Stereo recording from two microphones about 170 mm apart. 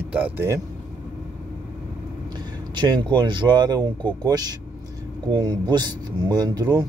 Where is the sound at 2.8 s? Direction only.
25° right (ahead or behind).